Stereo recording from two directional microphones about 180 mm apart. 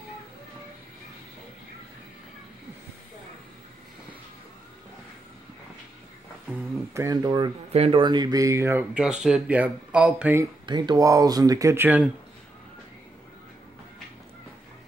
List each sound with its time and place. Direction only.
6.9 s speech: 15° right (ahead or behind)
10.7 s speech: 25° right (ahead or behind)